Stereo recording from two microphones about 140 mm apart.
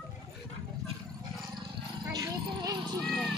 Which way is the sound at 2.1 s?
30° right (ahead or behind).